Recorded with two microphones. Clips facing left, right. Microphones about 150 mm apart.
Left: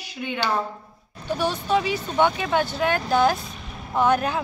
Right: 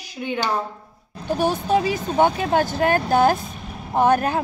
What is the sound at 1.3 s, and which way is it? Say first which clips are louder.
Speech: right 3 dB; 50° right (ahead or behind).